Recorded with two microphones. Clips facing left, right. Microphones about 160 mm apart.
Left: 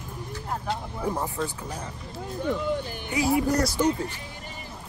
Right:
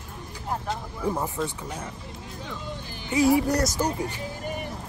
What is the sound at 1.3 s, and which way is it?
Speech, centre (ahead or behind).